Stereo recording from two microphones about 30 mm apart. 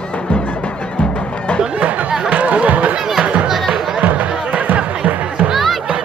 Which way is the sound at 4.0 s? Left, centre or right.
Right.